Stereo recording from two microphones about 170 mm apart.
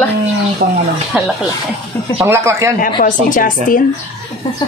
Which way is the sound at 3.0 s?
50° left (ahead or behind).